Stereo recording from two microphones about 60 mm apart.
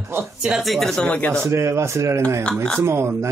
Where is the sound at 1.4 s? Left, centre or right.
Right.